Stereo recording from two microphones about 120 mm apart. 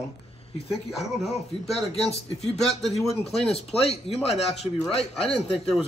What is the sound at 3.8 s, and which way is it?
Speech, 55° left (ahead or behind).